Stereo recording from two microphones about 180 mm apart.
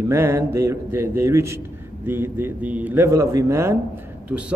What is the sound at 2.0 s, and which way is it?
A man's voice, 10° right (ahead or behind).